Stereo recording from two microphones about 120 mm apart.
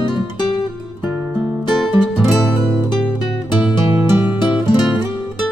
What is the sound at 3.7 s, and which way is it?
Music, 40° left (ahead or behind).